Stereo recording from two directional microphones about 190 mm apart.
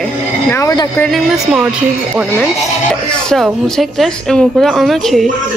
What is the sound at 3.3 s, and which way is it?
Speech, centre (ahead or behind).